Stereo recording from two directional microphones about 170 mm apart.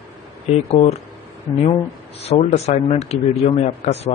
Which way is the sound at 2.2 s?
40° left (ahead or behind).